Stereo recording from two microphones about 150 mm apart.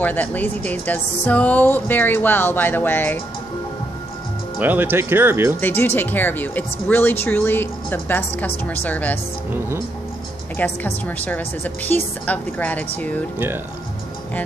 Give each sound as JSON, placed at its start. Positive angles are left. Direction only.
{"t": 0.0, "sound": "speech", "side_deg": 10}
{"t": 4.6, "sound": "speech", "side_deg": -10}
{"t": 5.6, "sound": "speech", "side_deg": 15}
{"t": 9.5, "sound": "speech", "side_deg": -15}
{"t": 10.6, "sound": "speech", "side_deg": 10}